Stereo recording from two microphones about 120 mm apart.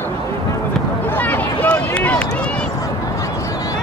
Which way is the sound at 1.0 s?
15° left (ahead or behind).